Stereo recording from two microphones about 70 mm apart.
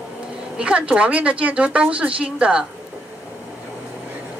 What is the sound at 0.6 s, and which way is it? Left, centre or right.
A woman's voice, centre.